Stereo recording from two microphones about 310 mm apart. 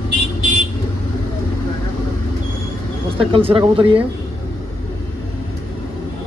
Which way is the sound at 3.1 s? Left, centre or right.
Centre.